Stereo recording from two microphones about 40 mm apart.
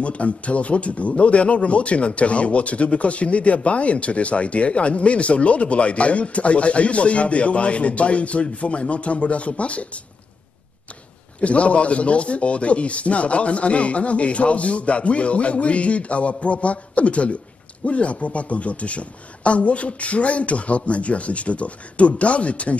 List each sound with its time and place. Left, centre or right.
0.0 s speech: left
11.4 s speech: left